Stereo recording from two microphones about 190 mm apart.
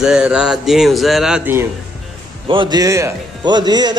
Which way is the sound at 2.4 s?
25° right (ahead or behind).